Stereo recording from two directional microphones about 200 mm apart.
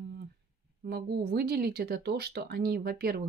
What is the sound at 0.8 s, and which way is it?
Speech, 50° right (ahead or behind).